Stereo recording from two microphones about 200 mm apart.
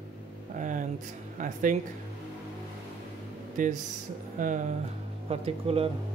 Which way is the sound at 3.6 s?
40° right (ahead or behind).